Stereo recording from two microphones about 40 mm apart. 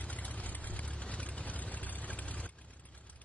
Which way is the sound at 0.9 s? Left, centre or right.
Left.